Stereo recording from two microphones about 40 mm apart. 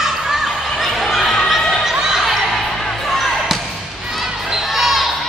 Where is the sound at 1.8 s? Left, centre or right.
Centre.